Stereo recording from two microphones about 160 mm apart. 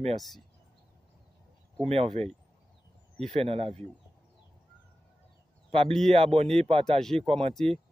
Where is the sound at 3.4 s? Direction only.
40° right (ahead or behind).